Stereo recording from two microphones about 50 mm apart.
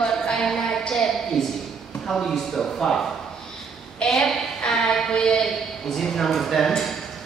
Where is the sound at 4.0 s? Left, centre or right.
Centre.